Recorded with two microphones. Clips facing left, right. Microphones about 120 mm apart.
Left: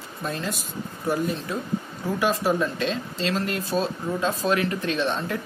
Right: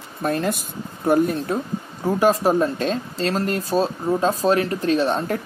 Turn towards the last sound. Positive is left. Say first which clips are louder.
# right 5 dB
turn(degrees=-40)  # may be behind; listen again after turning